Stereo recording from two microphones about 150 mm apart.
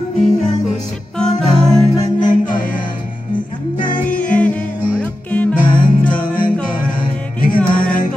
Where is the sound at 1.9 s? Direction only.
25° left (ahead or behind).